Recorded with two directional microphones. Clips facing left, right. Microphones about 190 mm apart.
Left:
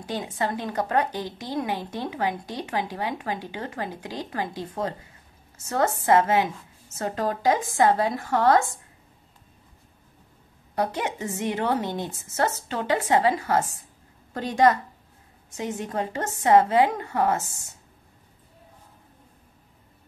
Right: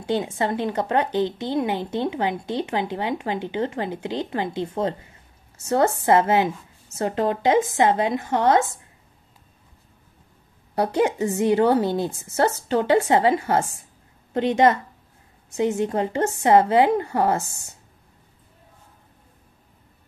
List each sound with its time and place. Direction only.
0.0 s a woman's voice: 25° right (ahead or behind)
10.7 s a woman's voice: 30° right (ahead or behind)